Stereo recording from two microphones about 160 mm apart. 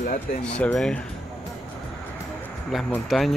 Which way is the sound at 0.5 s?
5° left (ahead or behind).